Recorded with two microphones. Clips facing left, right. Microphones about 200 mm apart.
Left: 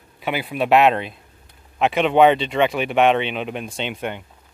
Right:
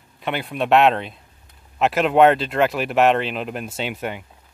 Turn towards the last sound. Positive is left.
turn(degrees=-5)  # may be behind; listen again after turning